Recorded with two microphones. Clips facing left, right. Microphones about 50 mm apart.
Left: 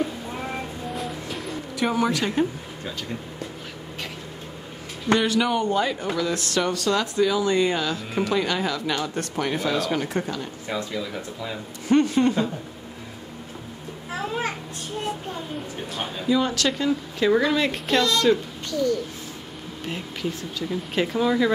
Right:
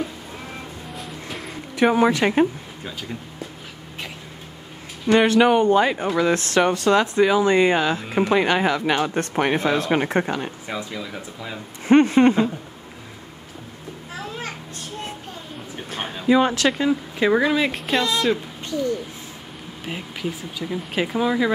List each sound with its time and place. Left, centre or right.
0.9 s vehicle: centre
1.8 s speech: right
5.0 s speech: right
10.7 s speech: centre
11.9 s speech: right
16.3 s speech: right; by 18.4 s centre
18.7 s speech: right
19.8 s speech: centre